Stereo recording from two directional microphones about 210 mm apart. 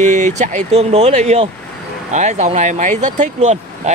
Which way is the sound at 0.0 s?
35° right (ahead or behind).